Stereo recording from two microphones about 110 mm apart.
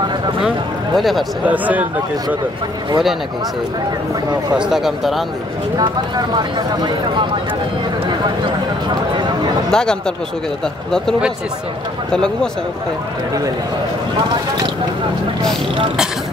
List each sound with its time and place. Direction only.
0.9 s speech: centre (ahead or behind)
1.4 s speech: 15° right (ahead or behind)
4.6 s speech: 5° right (ahead or behind)
5.8 s speech: 40° right (ahead or behind)
9.7 s speech: 5° left (ahead or behind)